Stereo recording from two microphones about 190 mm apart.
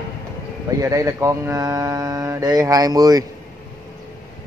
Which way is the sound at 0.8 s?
15° right (ahead or behind).